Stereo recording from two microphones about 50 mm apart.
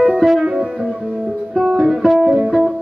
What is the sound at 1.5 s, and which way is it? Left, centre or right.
Music, centre.